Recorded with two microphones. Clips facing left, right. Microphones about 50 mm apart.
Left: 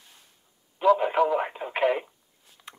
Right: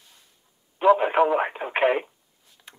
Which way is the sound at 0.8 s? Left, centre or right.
Right.